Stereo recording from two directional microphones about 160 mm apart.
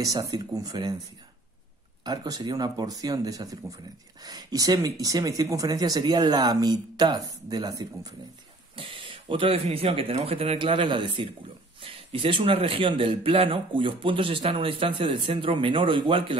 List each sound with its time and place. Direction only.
0.0 s speech: 25° right (ahead or behind)
2.0 s speech: 25° right (ahead or behind)